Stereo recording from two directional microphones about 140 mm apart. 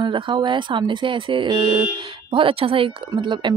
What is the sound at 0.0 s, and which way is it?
Speech, 35° right (ahead or behind).